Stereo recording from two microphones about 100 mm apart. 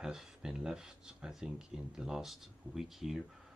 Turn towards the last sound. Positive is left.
turn(degrees=0)  # may be behind; listen again after turning